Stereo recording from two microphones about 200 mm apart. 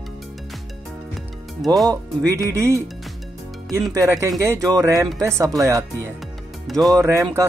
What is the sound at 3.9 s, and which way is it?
Speech, 15° right (ahead or behind).